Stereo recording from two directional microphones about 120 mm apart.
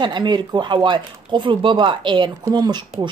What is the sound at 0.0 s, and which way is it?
Speech, 40° right (ahead or behind).